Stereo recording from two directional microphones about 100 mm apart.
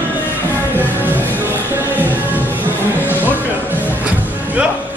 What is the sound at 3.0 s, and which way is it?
Music, 20° left (ahead or behind).